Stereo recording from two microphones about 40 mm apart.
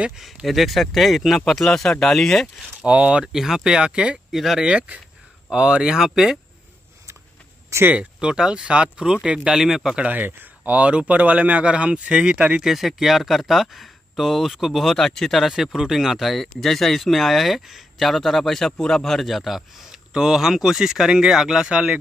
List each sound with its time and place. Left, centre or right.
0.5 s speech: centre
2.8 s speech: right
3.3 s speech: centre; by 4.2 s right
4.3 s speech: centre
5.5 s speech: right; by 6.4 s centre
8.2 s speech: right
9.6 s speech: centre
10.1 s speech: right
12.4 s speech: right
12.6 s speech: centre
15.5 s speech: centre
18.7 s speech: centre
19.2 s a man's voice: centre